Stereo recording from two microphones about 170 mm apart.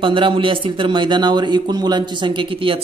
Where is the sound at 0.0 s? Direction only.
30° right (ahead or behind).